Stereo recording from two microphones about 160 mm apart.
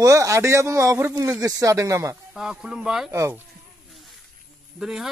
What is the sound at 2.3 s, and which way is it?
Speech, 5° right (ahead or behind).